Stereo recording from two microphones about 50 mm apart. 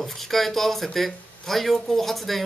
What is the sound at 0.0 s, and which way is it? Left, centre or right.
Speech, centre.